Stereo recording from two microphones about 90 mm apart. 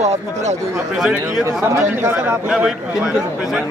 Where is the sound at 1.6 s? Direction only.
35° right (ahead or behind).